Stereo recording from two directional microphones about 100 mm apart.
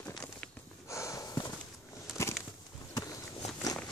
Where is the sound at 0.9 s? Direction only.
30° left (ahead or behind).